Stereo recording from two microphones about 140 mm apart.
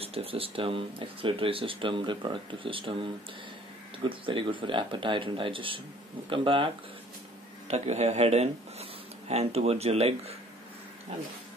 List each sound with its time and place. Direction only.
0.0 s speech: 45° right (ahead or behind)
7.6 s speech: 50° right (ahead or behind)